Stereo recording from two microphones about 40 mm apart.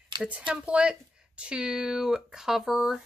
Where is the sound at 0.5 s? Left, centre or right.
Right.